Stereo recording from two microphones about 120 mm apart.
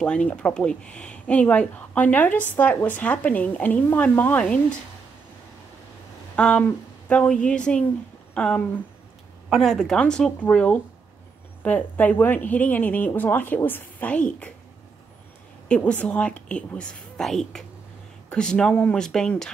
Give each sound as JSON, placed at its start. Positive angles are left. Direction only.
{"t": 0.0, "sound": "speech", "side_deg": 10}
{"t": 6.3, "sound": "a sound", "side_deg": 10}
{"t": 7.1, "sound": "a woman's voice", "side_deg": 10}
{"t": 15.7, "sound": "speech", "side_deg": 10}